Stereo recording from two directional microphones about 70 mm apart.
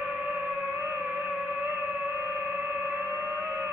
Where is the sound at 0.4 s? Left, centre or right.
Right.